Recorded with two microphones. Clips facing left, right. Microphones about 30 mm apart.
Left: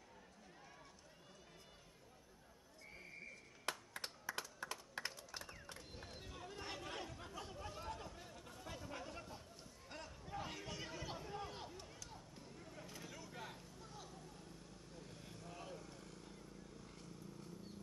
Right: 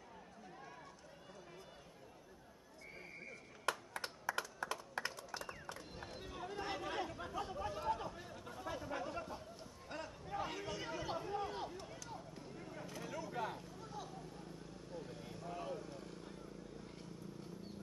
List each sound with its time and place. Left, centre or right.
3.0 s horse: centre
3.6 s computer keyboard: centre
5.7 s chatter: centre
12.8 s vehicle: centre